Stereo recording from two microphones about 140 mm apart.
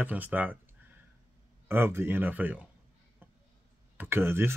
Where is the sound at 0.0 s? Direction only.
10° right (ahead or behind).